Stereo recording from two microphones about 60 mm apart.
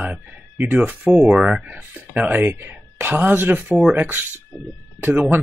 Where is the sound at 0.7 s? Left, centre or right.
Right.